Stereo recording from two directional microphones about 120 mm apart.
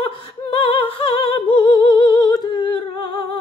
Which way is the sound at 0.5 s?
50° left (ahead or behind).